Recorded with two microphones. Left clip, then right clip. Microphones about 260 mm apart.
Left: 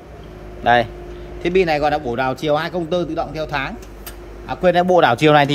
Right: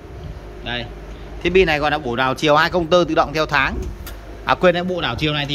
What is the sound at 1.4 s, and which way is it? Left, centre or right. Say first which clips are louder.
A man's voice: right 1 dB; centre.